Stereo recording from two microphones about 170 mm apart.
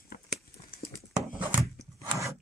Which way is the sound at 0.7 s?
60° left (ahead or behind).